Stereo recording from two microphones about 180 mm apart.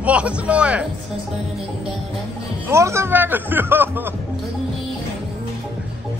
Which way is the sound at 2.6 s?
15° right (ahead or behind).